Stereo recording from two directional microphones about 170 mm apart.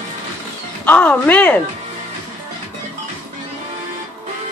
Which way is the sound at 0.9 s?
10° left (ahead or behind).